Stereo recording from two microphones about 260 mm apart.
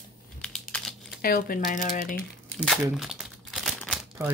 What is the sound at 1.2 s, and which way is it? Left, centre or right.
Speech, left.